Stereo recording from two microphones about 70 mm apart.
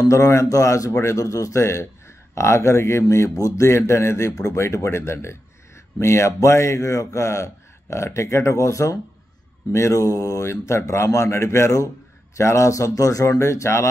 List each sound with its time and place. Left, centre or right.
0.0 s a man's voice: left